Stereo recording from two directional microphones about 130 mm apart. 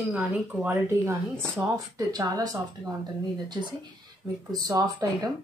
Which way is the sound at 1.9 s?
25° right (ahead or behind).